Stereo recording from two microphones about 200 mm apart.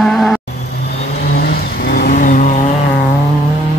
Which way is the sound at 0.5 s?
55° left (ahead or behind).